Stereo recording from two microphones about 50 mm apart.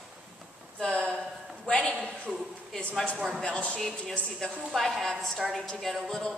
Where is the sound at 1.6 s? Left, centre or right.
Left.